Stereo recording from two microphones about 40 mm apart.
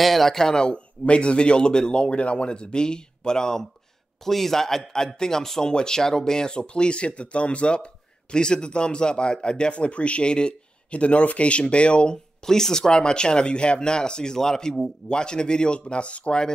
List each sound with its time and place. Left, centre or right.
0.0 s a man's voice: centre; by 12.2 s left
12.4 s a man's voice: centre